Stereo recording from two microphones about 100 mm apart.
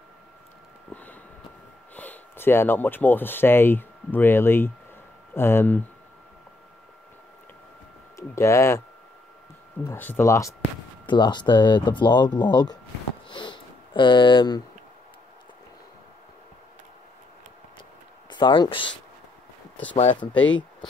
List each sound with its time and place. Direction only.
2.0 s speech: 20° left (ahead or behind)
8.2 s speech: 30° left (ahead or behind)
9.9 s speech: 20° left (ahead or behind)
10.2 s speech: 30° left (ahead or behind)
11.1 s speech: 50° left (ahead or behind)
13.3 s sniff: 50° left (ahead or behind)
18.3 s speech: 50° left (ahead or behind)
20.3 s speech: 15° left (ahead or behind)